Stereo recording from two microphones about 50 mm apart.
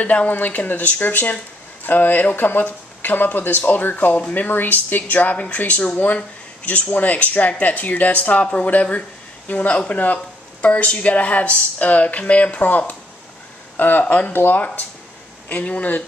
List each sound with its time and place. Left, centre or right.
0.0 s speech: left
14.0 s speech: left
14.3 s speech: left
15.4 s speech: left